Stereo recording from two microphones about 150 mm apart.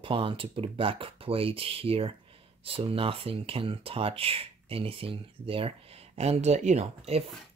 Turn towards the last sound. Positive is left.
turn(degrees=-45)  # may be behind; listen again after turning